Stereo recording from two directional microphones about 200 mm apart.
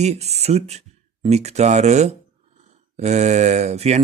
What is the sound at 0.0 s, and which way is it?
Speech, 35° right (ahead or behind).